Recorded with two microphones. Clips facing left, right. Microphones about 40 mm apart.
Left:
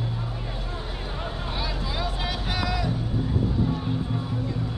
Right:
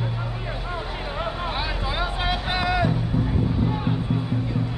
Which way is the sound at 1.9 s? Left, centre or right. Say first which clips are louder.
Right 6 dB; right.